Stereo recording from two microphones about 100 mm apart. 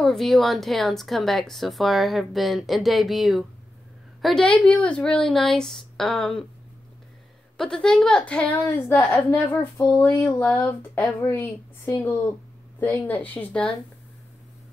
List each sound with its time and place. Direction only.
0.0 s a woman's voice: 5° left (ahead or behind)
4.5 s speech: 10° left (ahead or behind)
7.5 s speech: 5° left (ahead or behind)